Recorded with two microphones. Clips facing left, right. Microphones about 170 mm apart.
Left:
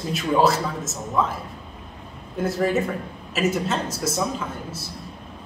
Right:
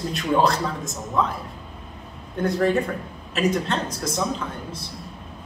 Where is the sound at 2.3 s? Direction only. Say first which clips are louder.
Right 1 dB; 5° left (ahead or behind).